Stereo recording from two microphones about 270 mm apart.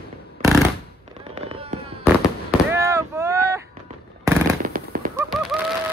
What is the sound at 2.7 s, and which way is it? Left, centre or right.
Boat, centre.